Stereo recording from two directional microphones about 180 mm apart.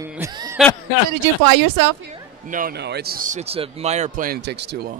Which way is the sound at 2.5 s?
55° right (ahead or behind).